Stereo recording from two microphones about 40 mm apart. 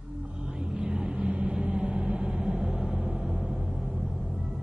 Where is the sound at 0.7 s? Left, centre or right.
Centre.